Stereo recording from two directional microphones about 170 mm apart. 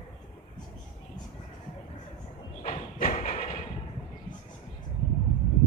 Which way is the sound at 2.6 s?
40° left (ahead or behind).